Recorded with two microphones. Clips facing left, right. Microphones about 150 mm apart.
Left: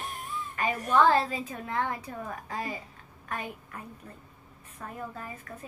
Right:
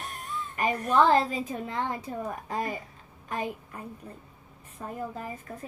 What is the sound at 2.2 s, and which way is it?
Speech, 10° right (ahead or behind).